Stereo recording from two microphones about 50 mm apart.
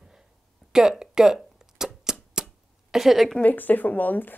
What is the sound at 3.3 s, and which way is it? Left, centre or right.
Speech, left.